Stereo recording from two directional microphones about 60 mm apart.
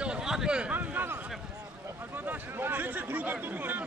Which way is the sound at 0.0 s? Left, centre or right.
Centre.